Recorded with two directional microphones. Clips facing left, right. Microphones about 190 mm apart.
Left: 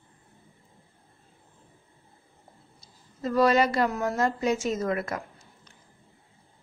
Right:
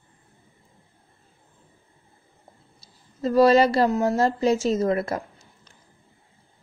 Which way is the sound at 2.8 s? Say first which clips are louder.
Right 5 dB; 30° right (ahead or behind).